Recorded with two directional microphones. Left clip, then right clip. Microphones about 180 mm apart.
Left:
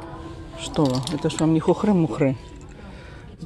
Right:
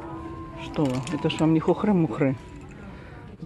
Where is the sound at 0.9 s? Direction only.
10° left (ahead or behind).